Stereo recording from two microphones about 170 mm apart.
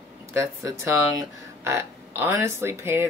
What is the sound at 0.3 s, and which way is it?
Speech, 20° right (ahead or behind).